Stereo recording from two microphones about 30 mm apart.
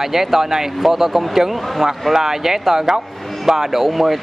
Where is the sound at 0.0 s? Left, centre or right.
Centre.